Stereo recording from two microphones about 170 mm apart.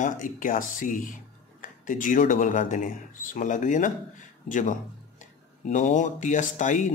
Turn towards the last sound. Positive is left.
turn(degrees=45)  # may be behind; listen again after turning